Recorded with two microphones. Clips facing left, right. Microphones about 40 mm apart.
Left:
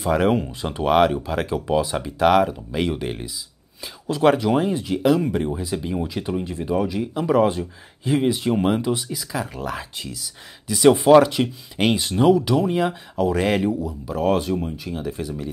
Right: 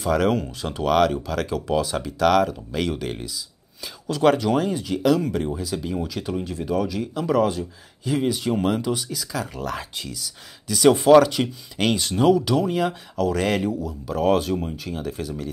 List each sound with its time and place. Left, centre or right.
0.0 s speech: centre
13.6 s speech: centre
14.5 s speech: centre
14.9 s speech: centre